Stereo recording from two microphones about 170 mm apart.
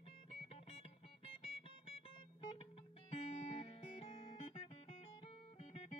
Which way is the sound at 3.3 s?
40° left (ahead or behind).